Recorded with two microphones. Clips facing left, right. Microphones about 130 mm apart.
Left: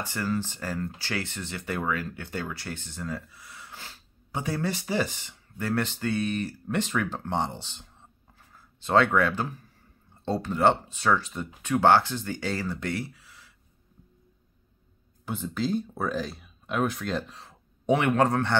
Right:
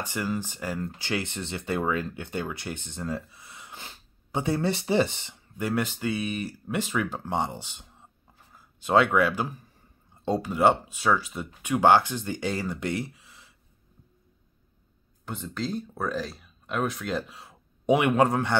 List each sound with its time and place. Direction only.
0.0 s speech: 15° right (ahead or behind)
5.6 s speech: 10° right (ahead or behind)
15.2 s speech: 5° left (ahead or behind)